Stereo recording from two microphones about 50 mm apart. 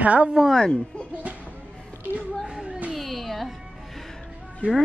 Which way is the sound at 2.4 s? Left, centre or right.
Centre.